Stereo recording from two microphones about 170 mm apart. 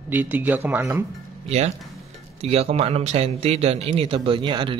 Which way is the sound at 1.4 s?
40° right (ahead or behind).